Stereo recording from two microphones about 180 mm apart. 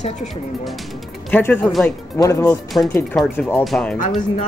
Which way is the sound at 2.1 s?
15° left (ahead or behind).